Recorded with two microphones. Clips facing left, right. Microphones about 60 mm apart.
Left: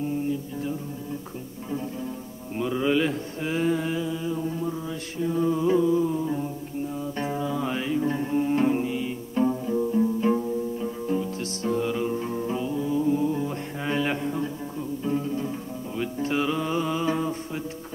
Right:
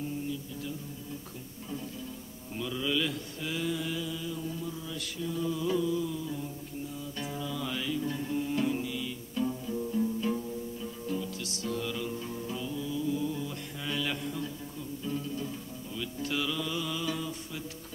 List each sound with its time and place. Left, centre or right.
0.3 s music: left
2.5 s mantra: left
7.2 s music: left